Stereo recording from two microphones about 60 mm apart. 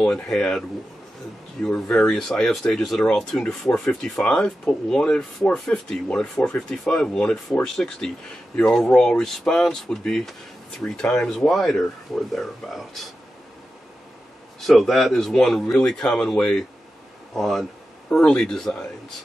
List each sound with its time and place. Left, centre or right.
0.0 s speech: centre
3.9 s speech: centre
14.6 s speech: centre
18.1 s speech: centre